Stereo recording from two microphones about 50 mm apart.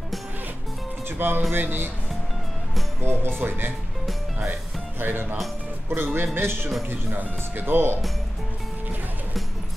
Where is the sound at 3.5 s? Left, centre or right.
Right.